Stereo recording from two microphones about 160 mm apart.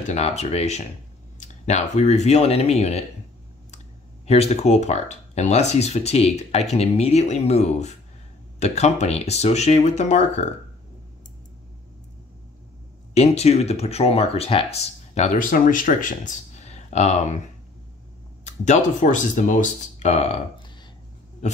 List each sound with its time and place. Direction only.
0.0 s speech: 45° left (ahead or behind)
4.3 s speech: 40° left (ahead or behind)
13.1 s speech: 40° left (ahead or behind)
15.5 s speech: 60° left (ahead or behind)
18.4 s speech: 50° left (ahead or behind)